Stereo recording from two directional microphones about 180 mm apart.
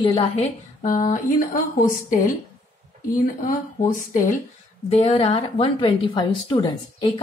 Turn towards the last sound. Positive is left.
turn(degrees=25)  # may be behind; listen again after turning